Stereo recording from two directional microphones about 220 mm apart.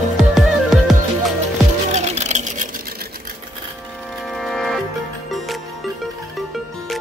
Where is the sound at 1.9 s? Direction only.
30° right (ahead or behind).